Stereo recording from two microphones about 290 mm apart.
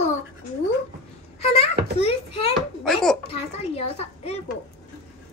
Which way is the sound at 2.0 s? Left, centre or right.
Centre.